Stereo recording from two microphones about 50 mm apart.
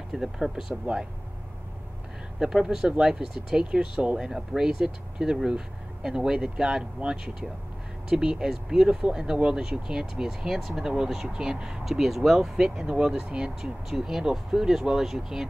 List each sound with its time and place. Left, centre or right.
0.1 s speech: centre
2.3 s speech: centre